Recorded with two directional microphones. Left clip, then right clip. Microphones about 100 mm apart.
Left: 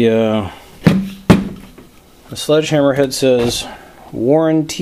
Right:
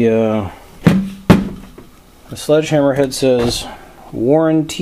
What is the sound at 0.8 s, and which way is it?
Music, 15° left (ahead or behind).